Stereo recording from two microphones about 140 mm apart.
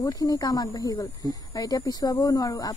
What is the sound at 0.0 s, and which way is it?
A woman's voice, 25° left (ahead or behind).